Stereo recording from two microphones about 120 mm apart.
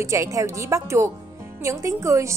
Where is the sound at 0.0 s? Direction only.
25° right (ahead or behind).